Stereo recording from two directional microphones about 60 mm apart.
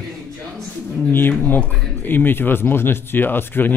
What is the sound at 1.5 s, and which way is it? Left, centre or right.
Speech, left.